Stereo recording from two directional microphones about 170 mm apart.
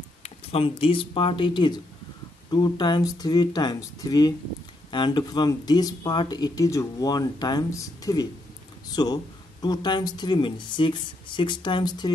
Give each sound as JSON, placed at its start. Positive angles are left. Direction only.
{"t": 0.2, "sound": "speech", "side_deg": 35}